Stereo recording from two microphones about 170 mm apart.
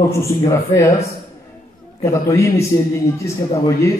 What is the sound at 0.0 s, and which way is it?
Speech, 15° left (ahead or behind).